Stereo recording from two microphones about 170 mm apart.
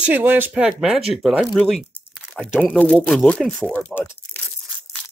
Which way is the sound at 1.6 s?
Centre (ahead or behind).